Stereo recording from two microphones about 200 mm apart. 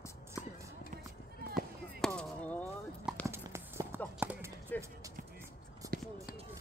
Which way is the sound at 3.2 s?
10° right (ahead or behind).